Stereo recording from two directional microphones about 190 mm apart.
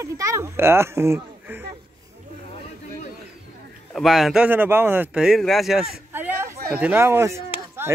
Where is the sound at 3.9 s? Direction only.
Centre (ahead or behind).